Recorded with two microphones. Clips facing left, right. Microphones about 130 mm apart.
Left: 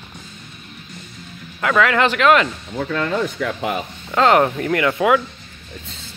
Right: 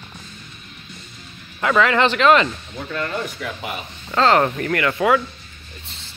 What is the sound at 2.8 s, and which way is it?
Speech, 90° left.